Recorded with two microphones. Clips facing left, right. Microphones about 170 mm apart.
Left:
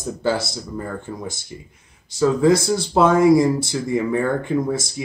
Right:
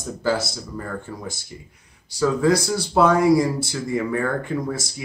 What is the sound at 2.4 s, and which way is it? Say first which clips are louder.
Speech: left 4 dB; 25° left (ahead or behind).